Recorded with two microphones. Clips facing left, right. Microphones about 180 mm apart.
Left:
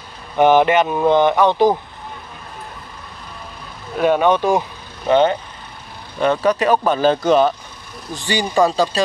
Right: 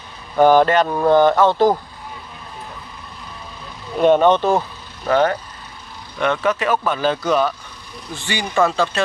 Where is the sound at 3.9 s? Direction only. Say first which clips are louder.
Right 2 dB; 10° left (ahead or behind).